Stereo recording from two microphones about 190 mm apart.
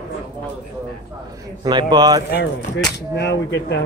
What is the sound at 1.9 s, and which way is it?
Speech, 20° right (ahead or behind).